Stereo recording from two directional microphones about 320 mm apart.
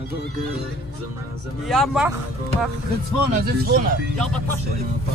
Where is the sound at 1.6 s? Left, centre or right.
Centre.